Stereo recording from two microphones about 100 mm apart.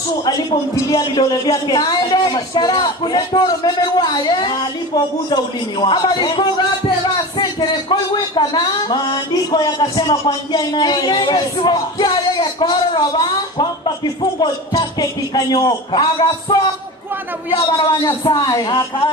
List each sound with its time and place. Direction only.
0.2 s a man's voice: 45° left (ahead or behind)
17.6 s speech: 40° left (ahead or behind)